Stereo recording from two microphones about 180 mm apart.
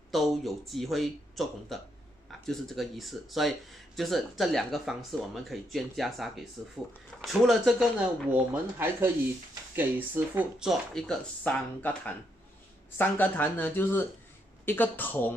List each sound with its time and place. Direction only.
0.1 s speech: centre (ahead or behind)
12.9 s speech: 10° left (ahead or behind)